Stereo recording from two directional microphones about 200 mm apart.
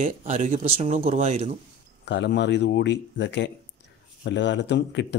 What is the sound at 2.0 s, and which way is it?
Speech, 60° left (ahead or behind).